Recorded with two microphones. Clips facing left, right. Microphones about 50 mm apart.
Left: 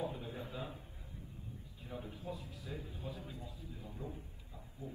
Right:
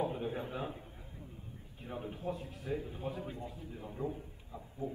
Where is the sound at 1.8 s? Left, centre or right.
Right.